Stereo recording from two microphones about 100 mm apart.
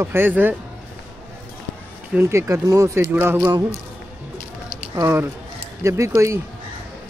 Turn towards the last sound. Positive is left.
turn(degrees=-25)  # may be behind; listen again after turning